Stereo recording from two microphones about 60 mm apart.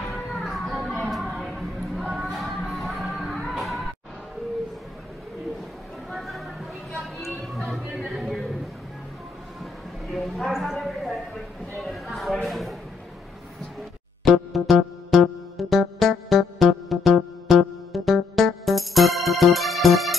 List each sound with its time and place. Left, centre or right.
0.0 s music: centre
6.0 s music: centre
10.1 s a sound: centre
14.2 s music: centre